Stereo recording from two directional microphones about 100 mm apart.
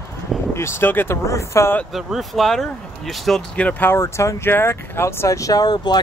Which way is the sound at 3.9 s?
30° left (ahead or behind).